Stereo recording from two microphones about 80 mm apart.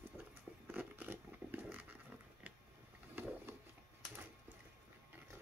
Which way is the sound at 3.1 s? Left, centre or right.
Right.